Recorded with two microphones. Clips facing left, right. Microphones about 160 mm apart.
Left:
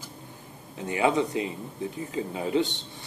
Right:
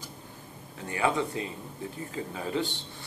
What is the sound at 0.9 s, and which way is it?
Speech, 20° left (ahead or behind).